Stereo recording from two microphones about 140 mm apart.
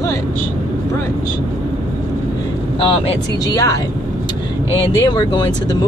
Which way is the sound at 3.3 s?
25° left (ahead or behind).